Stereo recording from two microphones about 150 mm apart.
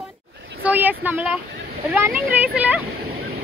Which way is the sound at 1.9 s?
10° right (ahead or behind).